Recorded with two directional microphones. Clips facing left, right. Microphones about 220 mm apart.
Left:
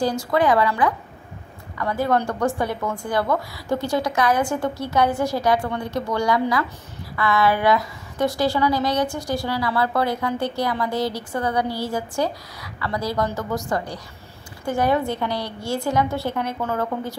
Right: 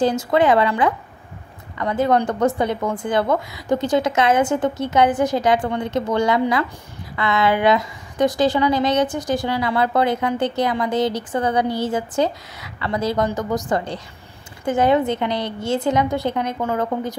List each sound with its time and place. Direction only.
0.0 s a woman's voice: 25° right (ahead or behind)